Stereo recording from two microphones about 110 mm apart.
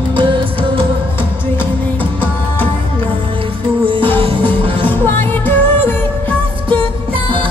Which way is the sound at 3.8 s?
50° right (ahead or behind).